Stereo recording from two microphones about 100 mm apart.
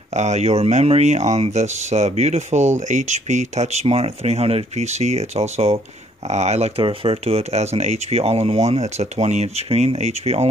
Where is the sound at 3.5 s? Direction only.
90° right.